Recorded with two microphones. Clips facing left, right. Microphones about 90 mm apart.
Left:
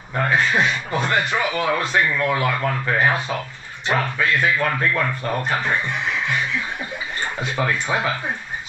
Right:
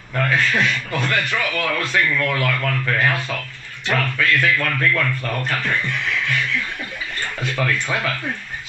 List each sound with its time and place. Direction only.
0.1 s speech: 20° left (ahead or behind)